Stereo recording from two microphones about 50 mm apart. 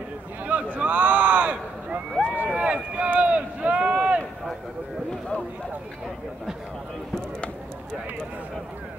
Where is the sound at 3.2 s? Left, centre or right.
Right.